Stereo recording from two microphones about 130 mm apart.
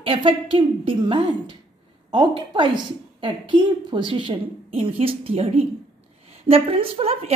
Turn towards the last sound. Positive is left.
turn(degrees=-50)  # may be behind; listen again after turning